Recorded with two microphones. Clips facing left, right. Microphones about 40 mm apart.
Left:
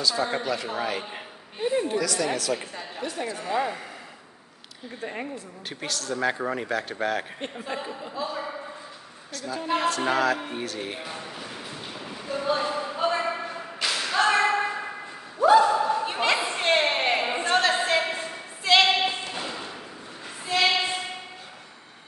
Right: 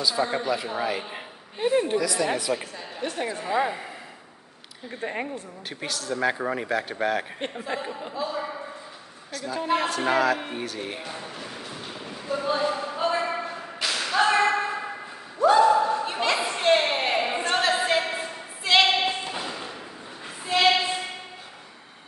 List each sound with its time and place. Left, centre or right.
0.0 s a man's voice: centre
1.6 s a woman's voice: right
2.0 s speech: centre
5.7 s a man's voice: centre
7.7 s speech: right
8.1 s a man's voice: centre
10.5 s a sound: centre
15.6 s dog: centre
16.5 s a sound: centre
19.4 s thump: centre
20.4 s a sound: centre